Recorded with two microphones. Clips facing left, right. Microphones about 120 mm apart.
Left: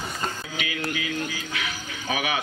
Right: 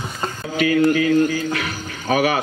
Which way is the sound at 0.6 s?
45° right (ahead or behind).